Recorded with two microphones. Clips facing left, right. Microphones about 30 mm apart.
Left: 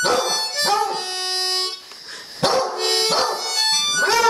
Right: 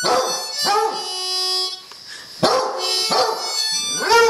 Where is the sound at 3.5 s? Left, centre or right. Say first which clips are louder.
Left 3 dB; left.